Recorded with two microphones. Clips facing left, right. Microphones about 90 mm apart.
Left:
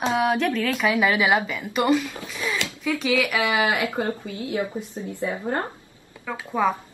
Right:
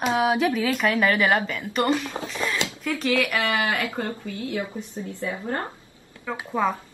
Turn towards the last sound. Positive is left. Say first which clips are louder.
# left 1 dB
turn(degrees=10)  # may be behind; listen again after turning